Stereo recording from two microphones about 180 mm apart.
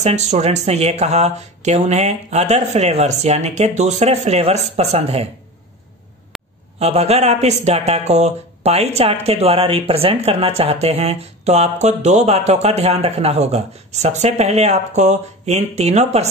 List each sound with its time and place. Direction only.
0.0 s speech: 40° right (ahead or behind)
6.3 s a sound: centre (ahead or behind)
6.8 s speech: 35° right (ahead or behind)